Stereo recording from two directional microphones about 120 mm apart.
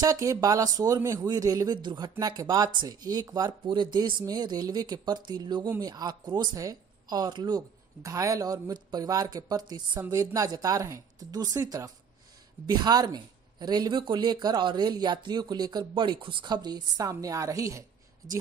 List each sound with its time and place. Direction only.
0.0 s speech: 30° right (ahead or behind)
15.9 s speech: 45° right (ahead or behind); by 18.4 s 30° right (ahead or behind)